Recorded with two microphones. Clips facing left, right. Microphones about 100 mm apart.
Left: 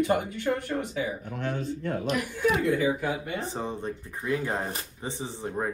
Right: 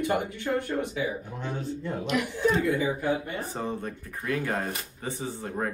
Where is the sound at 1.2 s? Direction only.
60° left (ahead or behind).